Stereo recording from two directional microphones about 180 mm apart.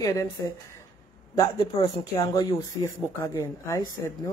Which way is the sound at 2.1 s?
20° left (ahead or behind).